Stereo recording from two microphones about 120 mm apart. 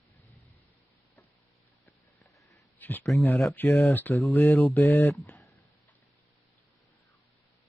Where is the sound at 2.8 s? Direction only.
15° left (ahead or behind).